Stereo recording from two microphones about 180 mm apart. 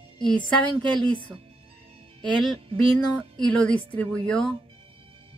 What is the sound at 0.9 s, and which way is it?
Speech, 30° right (ahead or behind).